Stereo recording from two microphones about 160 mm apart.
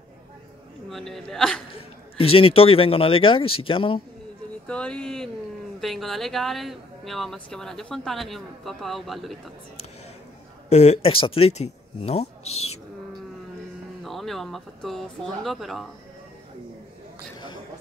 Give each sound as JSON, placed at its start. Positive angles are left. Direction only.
{"t": 0.8, "sound": "speech", "side_deg": 0}
{"t": 2.1, "sound": "speech", "side_deg": 35}
{"t": 4.6, "sound": "speech", "side_deg": 5}
{"t": 10.7, "sound": "speech", "side_deg": 45}
{"t": 14.0, "sound": "speech", "side_deg": 0}